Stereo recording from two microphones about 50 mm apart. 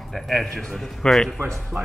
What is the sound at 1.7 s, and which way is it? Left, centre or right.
Speech, centre.